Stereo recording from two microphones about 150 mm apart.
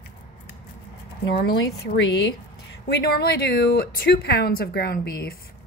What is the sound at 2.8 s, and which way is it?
Speech, 90° left.